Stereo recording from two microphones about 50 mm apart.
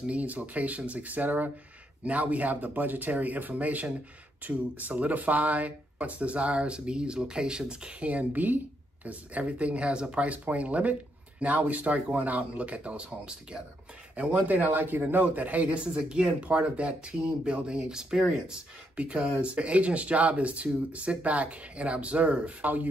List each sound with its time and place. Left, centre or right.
0.0 s speech: right
14.1 s speech: right